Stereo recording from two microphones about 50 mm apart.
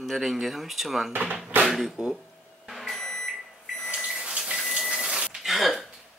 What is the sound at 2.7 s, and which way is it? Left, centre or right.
Vehicle, centre.